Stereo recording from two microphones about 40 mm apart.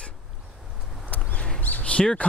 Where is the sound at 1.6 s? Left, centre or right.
Left.